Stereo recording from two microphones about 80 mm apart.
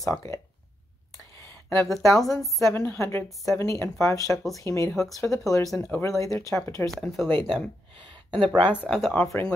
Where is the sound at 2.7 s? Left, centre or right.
Left.